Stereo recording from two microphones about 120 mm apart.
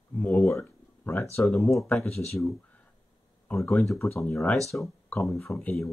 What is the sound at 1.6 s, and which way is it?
Speech, centre (ahead or behind).